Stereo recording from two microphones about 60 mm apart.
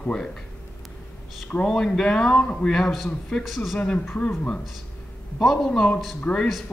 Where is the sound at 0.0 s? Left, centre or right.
Centre.